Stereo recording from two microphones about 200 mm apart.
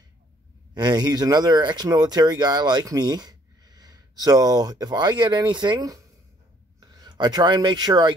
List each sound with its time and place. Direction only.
0.7 s speech: 20° right (ahead or behind)